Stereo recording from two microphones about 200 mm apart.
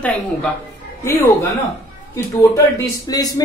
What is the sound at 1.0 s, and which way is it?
Speech, 15° left (ahead or behind).